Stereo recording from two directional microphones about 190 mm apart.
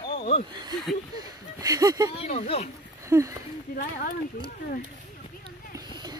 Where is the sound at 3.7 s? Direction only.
45° left (ahead or behind).